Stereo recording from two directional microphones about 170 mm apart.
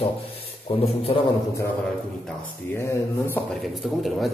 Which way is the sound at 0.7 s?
30° left (ahead or behind).